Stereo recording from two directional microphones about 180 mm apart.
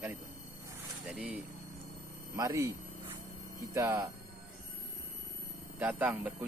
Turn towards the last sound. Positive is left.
turn(degrees=-10)  # may be behind; listen again after turning